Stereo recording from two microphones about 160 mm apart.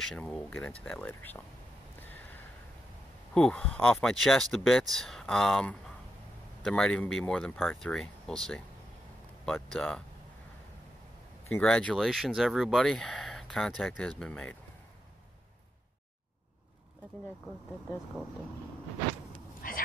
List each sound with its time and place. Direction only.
0.1 s speech: 5° left (ahead or behind)
3.3 s speech: 5° left (ahead or behind)
11.5 s speech: 5° left (ahead or behind)
19.6 s frog: 60° left (ahead or behind)